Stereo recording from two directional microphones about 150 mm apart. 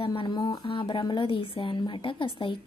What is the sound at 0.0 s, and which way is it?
A woman's voice, 35° left (ahead or behind).